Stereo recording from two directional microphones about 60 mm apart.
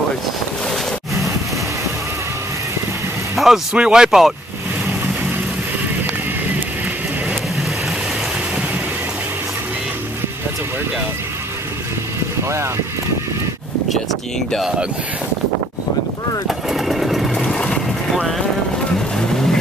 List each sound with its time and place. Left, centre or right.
3.3 s vehicle: centre
3.7 s speech: centre
12.4 s speech: right
16.4 s sewing machine: centre
17.5 s vehicle: centre